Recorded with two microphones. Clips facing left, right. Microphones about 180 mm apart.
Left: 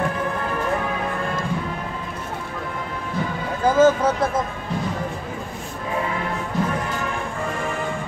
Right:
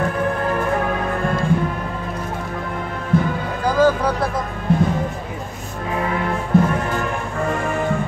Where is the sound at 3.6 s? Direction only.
25° left (ahead or behind).